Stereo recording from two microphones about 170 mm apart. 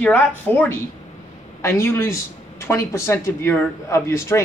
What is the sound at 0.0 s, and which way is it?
Speech, 10° left (ahead or behind).